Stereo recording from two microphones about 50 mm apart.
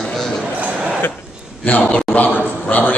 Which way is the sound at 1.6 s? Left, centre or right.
Left.